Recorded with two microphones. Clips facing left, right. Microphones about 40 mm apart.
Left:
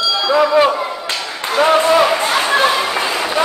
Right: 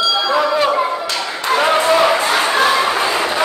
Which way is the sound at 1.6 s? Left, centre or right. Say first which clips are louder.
Left 2 dB; centre.